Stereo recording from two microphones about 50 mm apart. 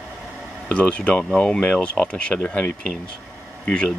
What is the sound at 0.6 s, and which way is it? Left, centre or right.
Speech, left.